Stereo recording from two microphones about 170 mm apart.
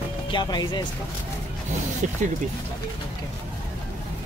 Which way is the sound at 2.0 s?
50° right (ahead or behind).